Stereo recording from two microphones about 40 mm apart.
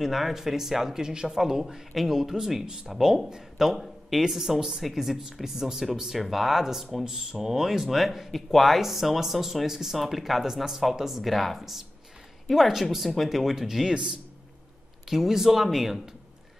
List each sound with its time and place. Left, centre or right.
0.0 s speech: centre
2.6 s speech: right
3.6 s speech: centre
6.1 s speech: centre
15.0 s speech: centre